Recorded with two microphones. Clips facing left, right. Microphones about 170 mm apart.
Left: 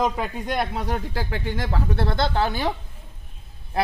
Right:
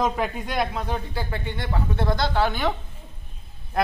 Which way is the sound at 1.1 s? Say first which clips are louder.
Left 2 dB; 90° left.